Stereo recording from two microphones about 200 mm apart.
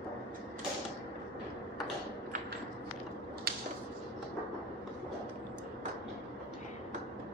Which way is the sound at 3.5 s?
50° right (ahead or behind).